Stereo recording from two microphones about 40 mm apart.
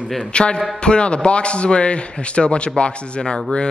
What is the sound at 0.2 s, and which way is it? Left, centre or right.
A man's voice, left.